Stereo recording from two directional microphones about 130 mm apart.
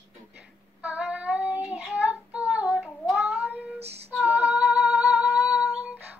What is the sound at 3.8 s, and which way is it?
Female singing, 55° right (ahead or behind).